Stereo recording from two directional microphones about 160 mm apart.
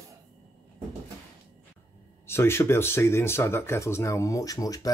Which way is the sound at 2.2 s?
15° left (ahead or behind).